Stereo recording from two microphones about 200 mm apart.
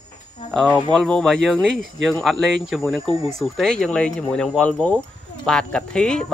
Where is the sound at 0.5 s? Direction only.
Centre (ahead or behind).